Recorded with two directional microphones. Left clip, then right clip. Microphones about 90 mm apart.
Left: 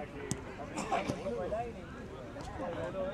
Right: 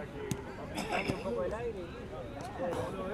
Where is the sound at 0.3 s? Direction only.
15° right (ahead or behind).